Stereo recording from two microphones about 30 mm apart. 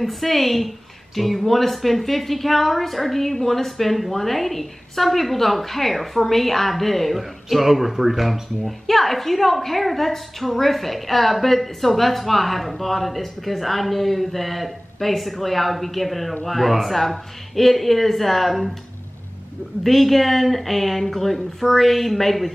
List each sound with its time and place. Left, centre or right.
0.0 s speech: centre
7.2 s speech: centre
19.8 s speech: centre